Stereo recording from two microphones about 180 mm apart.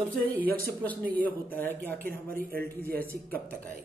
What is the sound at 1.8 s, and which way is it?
Speech, 50° right (ahead or behind).